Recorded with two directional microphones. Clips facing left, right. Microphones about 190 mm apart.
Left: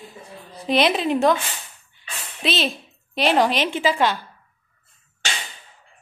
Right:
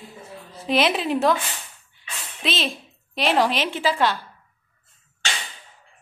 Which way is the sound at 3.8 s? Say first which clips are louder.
Left 1 dB; 20° left (ahead or behind).